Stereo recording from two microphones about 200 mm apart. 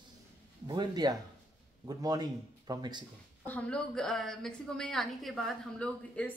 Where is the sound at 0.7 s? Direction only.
20° right (ahead or behind).